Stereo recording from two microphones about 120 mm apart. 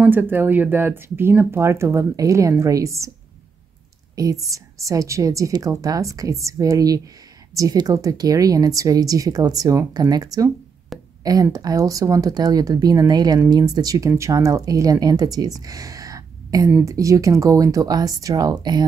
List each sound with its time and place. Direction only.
0.0 s speech: 15° right (ahead or behind)
4.1 s speech: 30° right (ahead or behind)
10.9 s a sound: centre (ahead or behind)
11.5 s speech: 30° right (ahead or behind)